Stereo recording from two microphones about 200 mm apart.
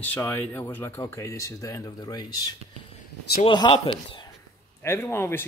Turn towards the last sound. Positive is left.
turn(degrees=10)  # may be behind; listen again after turning